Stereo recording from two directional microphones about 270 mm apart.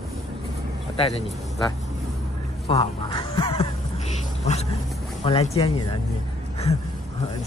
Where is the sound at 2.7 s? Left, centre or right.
Centre.